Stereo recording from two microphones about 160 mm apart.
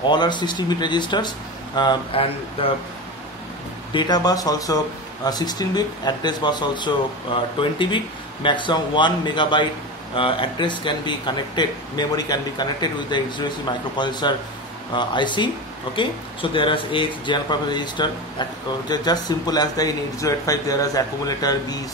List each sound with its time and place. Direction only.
0.1 s speech: 30° left (ahead or behind)
3.9 s speech: 25° left (ahead or behind)